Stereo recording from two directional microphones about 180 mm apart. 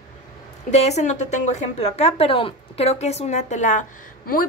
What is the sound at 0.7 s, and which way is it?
A woman's voice, 40° left (ahead or behind).